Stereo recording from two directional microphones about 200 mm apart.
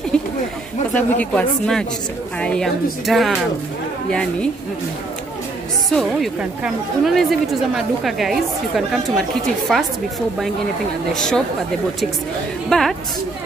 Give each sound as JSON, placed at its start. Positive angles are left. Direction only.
{"t": 0.1, "sound": "chatter", "side_deg": 5}
{"t": 0.9, "sound": "a woman's voice", "side_deg": 5}
{"t": 5.9, "sound": "a woman's voice", "side_deg": 0}
{"t": 11.1, "sound": "a woman's voice", "side_deg": 5}
{"t": 12.6, "sound": "a woman's voice", "side_deg": 0}